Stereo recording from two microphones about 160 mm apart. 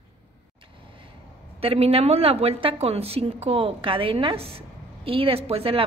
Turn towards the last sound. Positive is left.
turn(degrees=-35)  # may be behind; listen again after turning